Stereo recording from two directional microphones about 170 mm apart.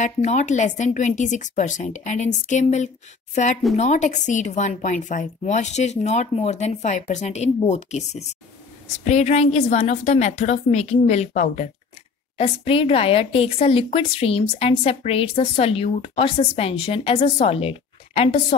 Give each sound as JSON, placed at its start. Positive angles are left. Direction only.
{"t": 0.0, "sound": "a woman's voice", "side_deg": 45}